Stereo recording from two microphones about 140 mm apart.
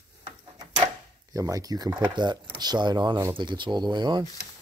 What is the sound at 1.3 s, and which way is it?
Speech, 25° right (ahead or behind).